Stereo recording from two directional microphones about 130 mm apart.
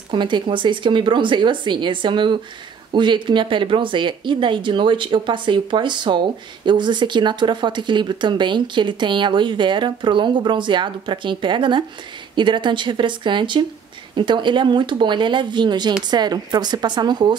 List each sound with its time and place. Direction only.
0.1 s speech: 40° right (ahead or behind)